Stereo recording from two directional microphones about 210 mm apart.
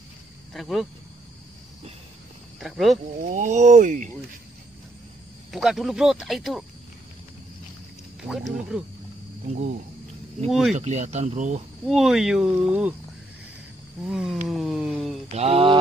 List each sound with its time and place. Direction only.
0.5 s speech: centre (ahead or behind)
2.6 s speech: centre (ahead or behind)
3.2 s speech: 35° right (ahead or behind)
5.5 s speech: centre (ahead or behind)
8.3 s speech: centre (ahead or behind)
10.5 s speech: centre (ahead or behind)
10.8 s speech: 30° right (ahead or behind)
11.9 s speech: centre (ahead or behind)
14.0 s speech: centre (ahead or behind)
14.5 s a sound: centre (ahead or behind)
15.3 s mantra: 25° right (ahead or behind)